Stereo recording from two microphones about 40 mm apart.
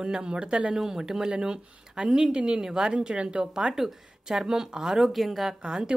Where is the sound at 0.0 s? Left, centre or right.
Right.